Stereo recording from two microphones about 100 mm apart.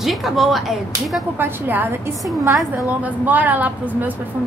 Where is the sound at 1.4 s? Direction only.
20° right (ahead or behind).